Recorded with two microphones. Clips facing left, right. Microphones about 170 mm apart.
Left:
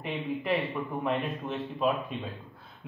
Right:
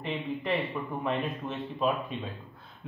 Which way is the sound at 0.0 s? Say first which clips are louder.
Even; 5° left (ahead or behind).